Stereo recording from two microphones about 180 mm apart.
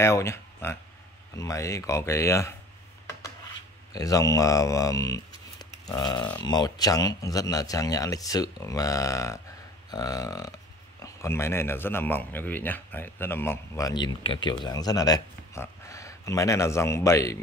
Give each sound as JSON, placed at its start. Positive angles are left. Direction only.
{"t": 0.0, "sound": "speech", "side_deg": 15}
{"t": 3.1, "sound": "a sound", "side_deg": 15}
{"t": 3.9, "sound": "speech", "side_deg": 20}